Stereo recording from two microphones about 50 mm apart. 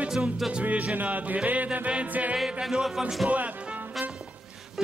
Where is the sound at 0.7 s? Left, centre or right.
Right.